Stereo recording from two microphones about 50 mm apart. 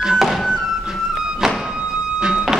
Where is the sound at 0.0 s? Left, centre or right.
Centre.